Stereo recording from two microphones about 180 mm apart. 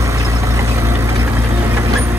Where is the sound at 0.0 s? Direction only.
15° right (ahead or behind).